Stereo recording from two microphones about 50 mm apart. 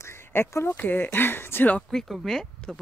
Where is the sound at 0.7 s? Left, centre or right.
Left.